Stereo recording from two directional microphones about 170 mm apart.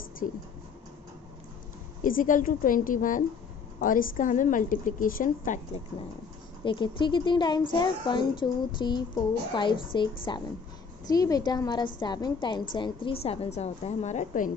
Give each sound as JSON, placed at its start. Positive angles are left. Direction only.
{"t": 2.0, "sound": "a woman's voice", "side_deg": 50}
{"t": 6.6, "sound": "a woman's voice", "side_deg": 30}